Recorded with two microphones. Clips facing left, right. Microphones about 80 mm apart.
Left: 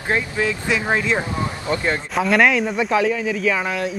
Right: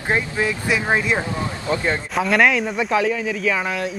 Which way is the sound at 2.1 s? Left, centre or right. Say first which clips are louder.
Left 1 dB; centre.